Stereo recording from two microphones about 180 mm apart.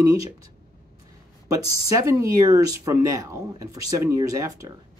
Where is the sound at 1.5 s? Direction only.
20° right (ahead or behind).